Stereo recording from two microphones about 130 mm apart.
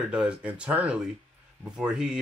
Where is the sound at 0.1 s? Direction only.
10° right (ahead or behind).